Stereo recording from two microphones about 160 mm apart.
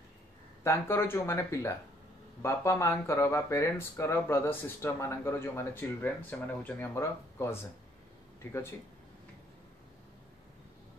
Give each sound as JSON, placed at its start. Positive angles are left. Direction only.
{"t": 0.7, "sound": "speech", "side_deg": 15}